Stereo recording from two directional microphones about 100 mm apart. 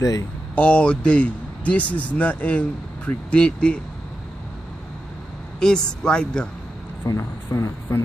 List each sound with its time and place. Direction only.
0.6 s speech: 10° left (ahead or behind)
5.6 s speech: 10° left (ahead or behind)
7.2 s speech: 30° left (ahead or behind)